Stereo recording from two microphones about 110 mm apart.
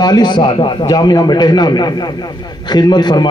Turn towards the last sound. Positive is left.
turn(degrees=40)  # may be behind; listen again after turning